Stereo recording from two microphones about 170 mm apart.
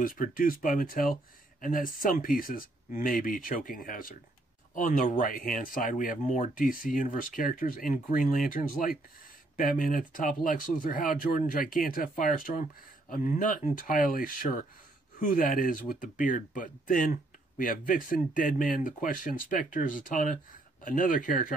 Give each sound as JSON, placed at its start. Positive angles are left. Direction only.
{"t": 0.0, "sound": "speech", "side_deg": 55}